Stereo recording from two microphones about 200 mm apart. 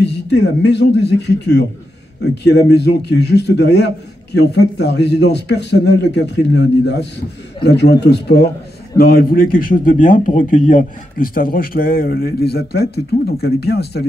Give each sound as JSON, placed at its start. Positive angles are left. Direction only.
{"t": 0.0, "sound": "a man's voice", "side_deg": 60}